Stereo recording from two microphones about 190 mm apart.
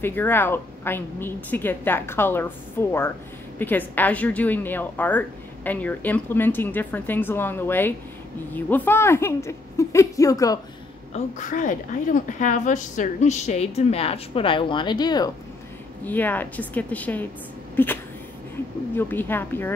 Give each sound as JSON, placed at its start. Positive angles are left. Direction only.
{"t": 0.0, "sound": "a woman's voice", "side_deg": 10}
{"t": 11.1, "sound": "a woman's voice", "side_deg": 40}
{"t": 16.1, "sound": "a woman's voice", "side_deg": 10}
{"t": 18.9, "sound": "a woman's voice", "side_deg": 10}